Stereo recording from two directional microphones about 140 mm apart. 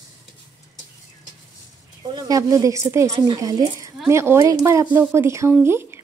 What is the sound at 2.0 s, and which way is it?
A woman's voice, 30° right (ahead or behind).